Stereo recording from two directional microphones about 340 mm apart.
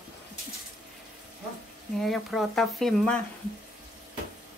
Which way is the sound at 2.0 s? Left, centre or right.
Centre.